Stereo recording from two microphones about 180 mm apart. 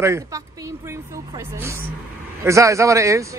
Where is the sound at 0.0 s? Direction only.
15° right (ahead or behind).